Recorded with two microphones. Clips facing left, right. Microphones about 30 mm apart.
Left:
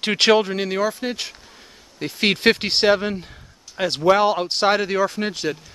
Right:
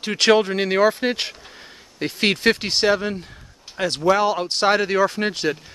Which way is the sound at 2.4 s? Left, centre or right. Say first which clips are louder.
Left 1 dB; left.